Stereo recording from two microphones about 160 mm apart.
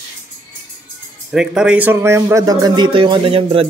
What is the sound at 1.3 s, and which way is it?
Speech, 5° right (ahead or behind).